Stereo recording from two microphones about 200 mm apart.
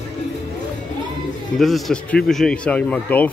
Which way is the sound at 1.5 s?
Centre (ahead or behind).